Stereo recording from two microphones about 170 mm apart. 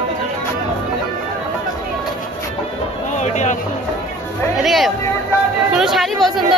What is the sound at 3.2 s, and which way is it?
Speech, 45° left (ahead or behind).